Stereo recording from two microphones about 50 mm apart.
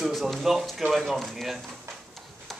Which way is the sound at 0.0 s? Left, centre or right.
Centre.